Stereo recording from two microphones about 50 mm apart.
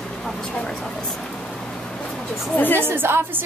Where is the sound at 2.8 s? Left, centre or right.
Right.